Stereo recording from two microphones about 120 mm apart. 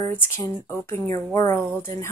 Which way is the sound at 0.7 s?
20° left (ahead or behind).